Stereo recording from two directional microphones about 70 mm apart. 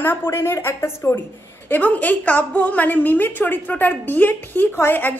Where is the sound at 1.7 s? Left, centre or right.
Left.